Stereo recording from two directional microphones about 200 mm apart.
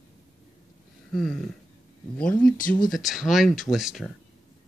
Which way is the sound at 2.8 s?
Centre (ahead or behind).